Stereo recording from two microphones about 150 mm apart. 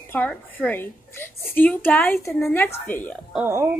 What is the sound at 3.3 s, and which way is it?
Speech, 15° right (ahead or behind).